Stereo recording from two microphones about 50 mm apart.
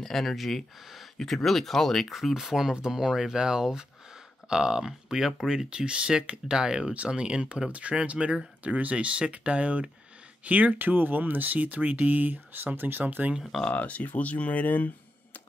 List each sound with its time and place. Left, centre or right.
0.0 s speech: centre
2.1 s speech: centre; by 13.3 s right
13.7 s speech: left